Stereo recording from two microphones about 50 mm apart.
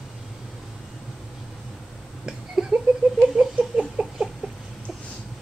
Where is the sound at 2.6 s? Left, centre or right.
Centre.